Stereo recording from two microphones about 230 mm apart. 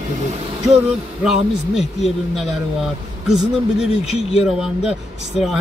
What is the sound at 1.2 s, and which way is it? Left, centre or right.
Speech, centre.